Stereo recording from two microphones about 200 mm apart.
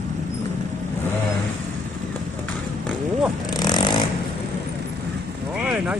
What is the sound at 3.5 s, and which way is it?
Snoring, 20° left (ahead or behind).